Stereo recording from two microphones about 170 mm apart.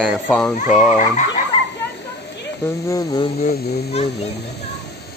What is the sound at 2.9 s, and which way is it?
Speech, 25° left (ahead or behind).